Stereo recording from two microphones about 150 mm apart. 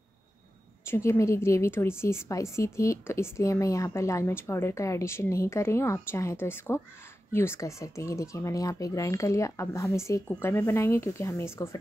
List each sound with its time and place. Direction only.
0.8 s a woman's voice: 15° left (ahead or behind)